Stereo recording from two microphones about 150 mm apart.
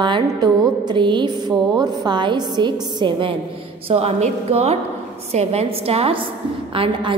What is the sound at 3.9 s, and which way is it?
A woman's voice, 45° right (ahead or behind).